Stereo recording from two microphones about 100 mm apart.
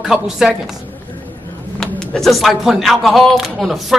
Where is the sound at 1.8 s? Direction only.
5° left (ahead or behind).